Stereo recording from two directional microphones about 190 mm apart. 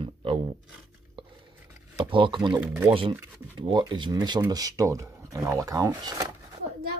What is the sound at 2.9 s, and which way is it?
Speech, 25° right (ahead or behind).